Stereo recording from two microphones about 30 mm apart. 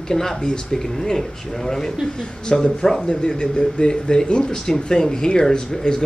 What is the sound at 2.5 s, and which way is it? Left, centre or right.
Speech, left.